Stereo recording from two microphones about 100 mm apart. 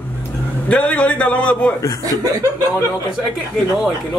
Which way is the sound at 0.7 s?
15° left (ahead or behind).